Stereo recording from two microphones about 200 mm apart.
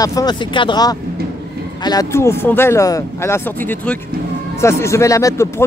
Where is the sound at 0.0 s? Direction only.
20° left (ahead or behind).